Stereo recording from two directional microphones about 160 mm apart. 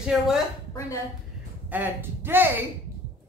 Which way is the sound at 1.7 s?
10° right (ahead or behind).